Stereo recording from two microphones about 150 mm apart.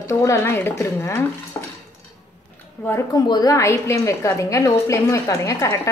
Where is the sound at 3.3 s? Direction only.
25° left (ahead or behind).